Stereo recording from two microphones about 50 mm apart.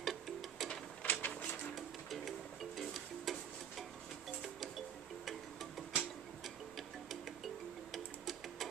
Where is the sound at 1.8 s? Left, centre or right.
Centre.